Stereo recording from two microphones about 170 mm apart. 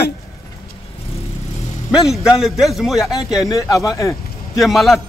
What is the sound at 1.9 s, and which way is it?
A man's voice, 5° right (ahead or behind).